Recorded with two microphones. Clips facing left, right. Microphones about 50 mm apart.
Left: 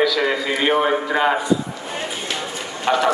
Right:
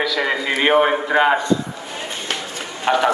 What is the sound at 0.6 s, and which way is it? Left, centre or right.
Speech, right.